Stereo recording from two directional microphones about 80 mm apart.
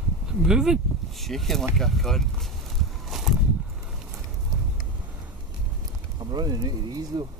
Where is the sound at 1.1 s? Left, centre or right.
Centre.